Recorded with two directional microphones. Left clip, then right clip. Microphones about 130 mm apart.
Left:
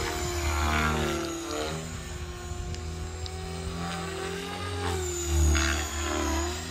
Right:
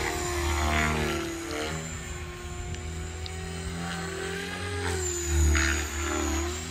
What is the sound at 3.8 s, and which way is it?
Vehicle, centre (ahead or behind).